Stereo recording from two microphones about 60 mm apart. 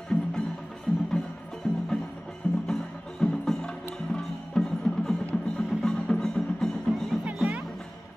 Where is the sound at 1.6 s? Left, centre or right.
Centre.